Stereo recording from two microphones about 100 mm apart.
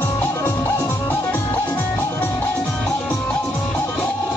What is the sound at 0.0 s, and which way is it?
Music, 30° left (ahead or behind).